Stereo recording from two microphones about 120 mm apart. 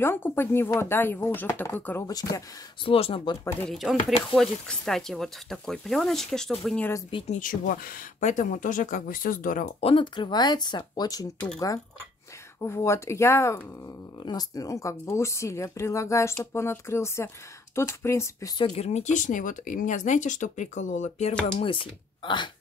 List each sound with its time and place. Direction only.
0.0 s speech: 20° left (ahead or behind)
2.0 s speech: 30° left (ahead or behind)
2.8 s speech: 50° left (ahead or behind)
3.6 s speech: centre (ahead or behind)
7.2 s speech: 90° left; by 9.9 s 60° left (ahead or behind)
9.9 s speech: 45° left (ahead or behind)
11.3 s speech: 5° left (ahead or behind)
12.6 s speech: 20° left (ahead or behind)
18.8 s speech: 70° left (ahead or behind)
21.5 s speech: 45° left (ahead or behind)